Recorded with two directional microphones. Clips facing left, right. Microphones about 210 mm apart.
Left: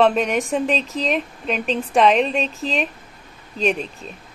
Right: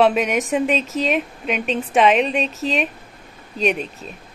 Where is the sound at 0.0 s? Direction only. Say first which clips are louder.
Even; 5° right (ahead or behind).